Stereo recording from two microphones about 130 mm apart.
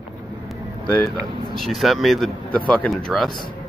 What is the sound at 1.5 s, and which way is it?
Speech, centre (ahead or behind).